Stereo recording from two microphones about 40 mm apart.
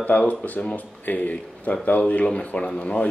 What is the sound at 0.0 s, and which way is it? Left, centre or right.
Speech, left.